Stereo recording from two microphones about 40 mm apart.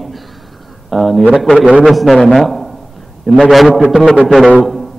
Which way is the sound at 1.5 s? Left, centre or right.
Right.